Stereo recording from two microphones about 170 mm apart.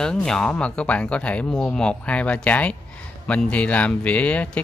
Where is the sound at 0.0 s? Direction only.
5° left (ahead or behind).